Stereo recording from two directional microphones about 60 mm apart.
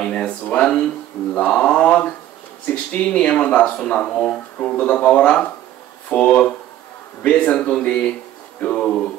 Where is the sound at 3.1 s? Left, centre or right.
Centre.